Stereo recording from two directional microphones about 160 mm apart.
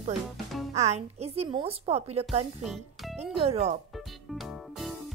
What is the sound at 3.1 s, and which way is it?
Speech, 40° right (ahead or behind).